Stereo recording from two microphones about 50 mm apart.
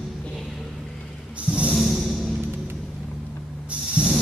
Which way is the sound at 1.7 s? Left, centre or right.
Centre.